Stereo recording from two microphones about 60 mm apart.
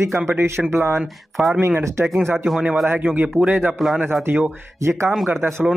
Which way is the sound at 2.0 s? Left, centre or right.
Centre.